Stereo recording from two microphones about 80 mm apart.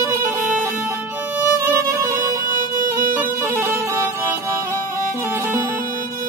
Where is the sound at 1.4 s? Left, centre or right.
Right.